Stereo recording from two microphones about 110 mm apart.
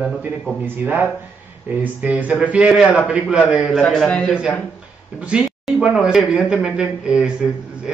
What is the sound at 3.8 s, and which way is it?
Speech, 10° left (ahead or behind).